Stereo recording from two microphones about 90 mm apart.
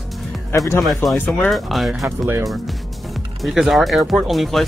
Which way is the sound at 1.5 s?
Centre (ahead or behind).